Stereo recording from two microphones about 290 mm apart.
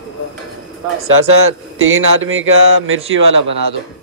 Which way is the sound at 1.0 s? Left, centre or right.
Right.